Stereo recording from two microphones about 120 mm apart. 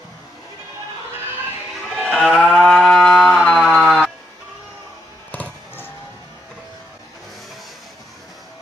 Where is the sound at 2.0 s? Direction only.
5° left (ahead or behind).